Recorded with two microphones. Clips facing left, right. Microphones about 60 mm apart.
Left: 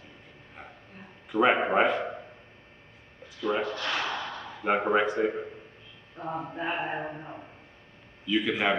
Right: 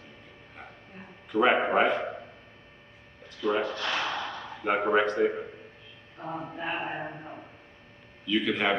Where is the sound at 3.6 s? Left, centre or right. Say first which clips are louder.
Even; centre.